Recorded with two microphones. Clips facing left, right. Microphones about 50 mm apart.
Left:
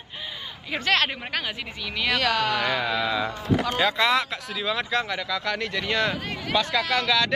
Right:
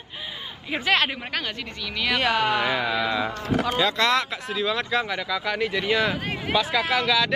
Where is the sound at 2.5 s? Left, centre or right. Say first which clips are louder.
Right 1 dB; centre.